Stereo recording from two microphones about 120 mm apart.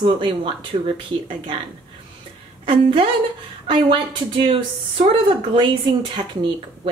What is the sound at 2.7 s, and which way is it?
A woman's voice, 50° right (ahead or behind).